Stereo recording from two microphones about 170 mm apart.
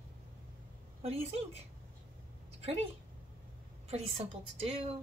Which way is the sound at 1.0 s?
35° right (ahead or behind).